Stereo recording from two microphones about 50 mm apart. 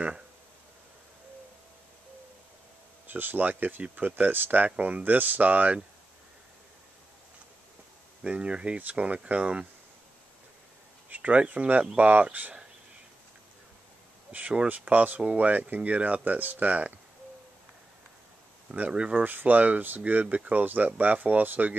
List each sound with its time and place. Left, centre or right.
3.1 s speech: right
8.2 s speech: right
11.1 s speech: right
14.3 s speech: right
18.8 s speech: right
19.2 s speech: right